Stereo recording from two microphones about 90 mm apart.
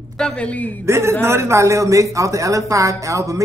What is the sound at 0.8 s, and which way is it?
A man's voice, 30° right (ahead or behind).